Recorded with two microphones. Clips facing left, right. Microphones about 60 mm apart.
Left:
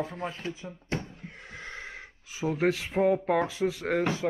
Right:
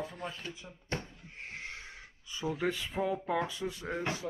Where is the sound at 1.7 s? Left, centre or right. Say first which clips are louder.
Left 6 dB; left.